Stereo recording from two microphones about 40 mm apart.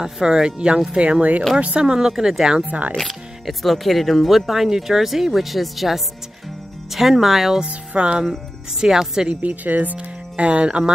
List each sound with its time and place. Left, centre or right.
0.0 s a woman's voice: centre
2.6 s speech: right
3.0 s speech: centre
7.6 s speech: right
8.3 s speech: centre
9.3 s speech: right
9.9 s speech: right